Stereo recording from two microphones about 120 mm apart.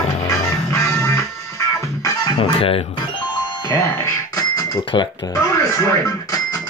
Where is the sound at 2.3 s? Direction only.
50° left (ahead or behind).